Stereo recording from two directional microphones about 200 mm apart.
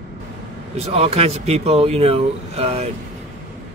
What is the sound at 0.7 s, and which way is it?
Speech, 30° right (ahead or behind).